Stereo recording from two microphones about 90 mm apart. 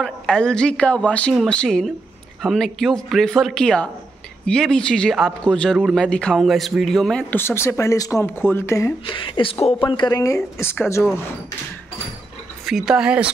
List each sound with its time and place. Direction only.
0.0 s a woman's voice: 10° left (ahead or behind)
6.3 s a man's voice: centre (ahead or behind)
7.2 s speech: 25° left (ahead or behind)
9.0 s speech: 65° left (ahead or behind); by 11.1 s 30° left (ahead or behind)
12.6 s speech: 5° right (ahead or behind)